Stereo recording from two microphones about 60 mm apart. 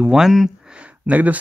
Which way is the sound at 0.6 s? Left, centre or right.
Centre.